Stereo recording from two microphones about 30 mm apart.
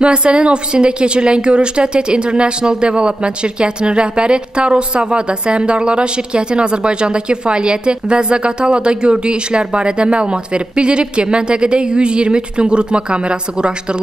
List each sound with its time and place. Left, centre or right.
0.0 s a woman's voice: right